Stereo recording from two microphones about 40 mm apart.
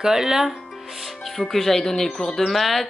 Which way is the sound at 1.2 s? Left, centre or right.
Centre.